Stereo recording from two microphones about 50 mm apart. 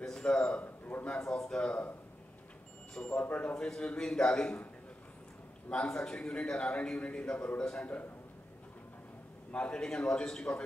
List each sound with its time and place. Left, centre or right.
0.0 s a sound: centre
0.5 s a sound: left
1.2 s a man's voice: centre
1.6 s a man's voice: left
3.1 s a man's voice: left
3.5 s a man's voice: centre
5.7 s a man's voice: centre
9.5 s a man's voice: centre